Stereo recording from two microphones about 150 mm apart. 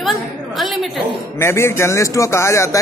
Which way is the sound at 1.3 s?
15° left (ahead or behind).